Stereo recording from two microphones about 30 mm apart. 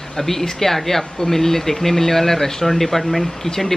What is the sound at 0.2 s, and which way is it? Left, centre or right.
Speech, centre.